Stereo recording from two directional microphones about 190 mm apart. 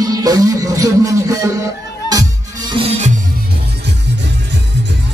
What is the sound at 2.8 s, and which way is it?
Music, 25° right (ahead or behind).